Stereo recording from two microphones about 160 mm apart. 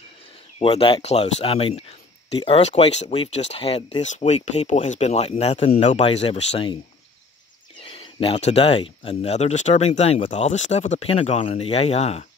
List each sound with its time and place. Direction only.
0.6 s speech: 35° left (ahead or behind)
7.8 s speech: 35° left (ahead or behind)